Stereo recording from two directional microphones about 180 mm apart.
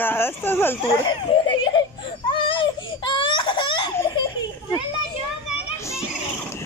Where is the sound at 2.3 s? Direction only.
30° left (ahead or behind).